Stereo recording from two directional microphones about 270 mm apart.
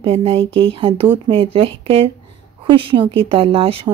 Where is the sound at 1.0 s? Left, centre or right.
Centre.